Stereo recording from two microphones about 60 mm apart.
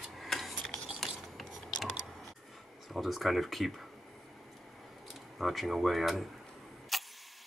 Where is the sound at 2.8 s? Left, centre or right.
Centre.